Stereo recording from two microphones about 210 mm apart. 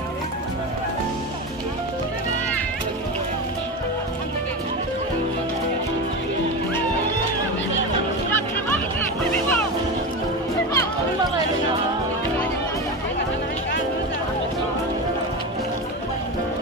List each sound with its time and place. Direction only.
9.3 s music: 5° left (ahead or behind)